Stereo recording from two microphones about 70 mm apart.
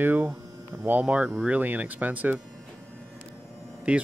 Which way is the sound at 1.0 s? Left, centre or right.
Right.